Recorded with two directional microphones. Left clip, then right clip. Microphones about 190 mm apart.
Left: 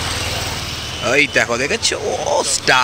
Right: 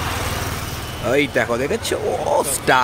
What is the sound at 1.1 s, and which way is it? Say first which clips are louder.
Speech: left 3 dB; 5° right (ahead or behind).